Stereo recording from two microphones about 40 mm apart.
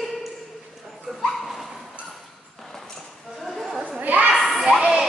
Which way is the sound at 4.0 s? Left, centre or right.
Right.